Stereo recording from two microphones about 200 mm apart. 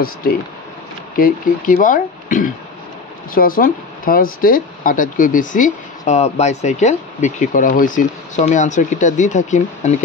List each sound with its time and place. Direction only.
1.1 s speech: 45° left (ahead or behind)